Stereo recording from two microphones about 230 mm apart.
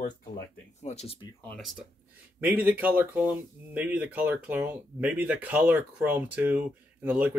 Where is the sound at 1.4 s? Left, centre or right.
Centre.